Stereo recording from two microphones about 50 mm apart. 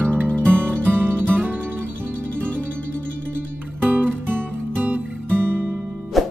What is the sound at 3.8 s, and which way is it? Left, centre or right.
Music, right.